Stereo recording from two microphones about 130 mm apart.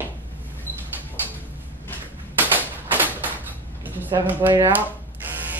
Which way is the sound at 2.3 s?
15° right (ahead or behind).